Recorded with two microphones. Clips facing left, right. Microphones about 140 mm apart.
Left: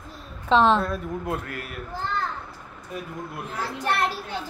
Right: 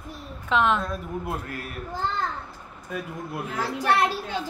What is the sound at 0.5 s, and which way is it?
Speech, 30° left (ahead or behind).